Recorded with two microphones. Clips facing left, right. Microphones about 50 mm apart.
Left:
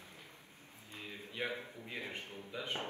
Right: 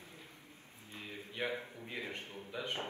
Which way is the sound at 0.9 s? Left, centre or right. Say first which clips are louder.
Right 1 dB; right.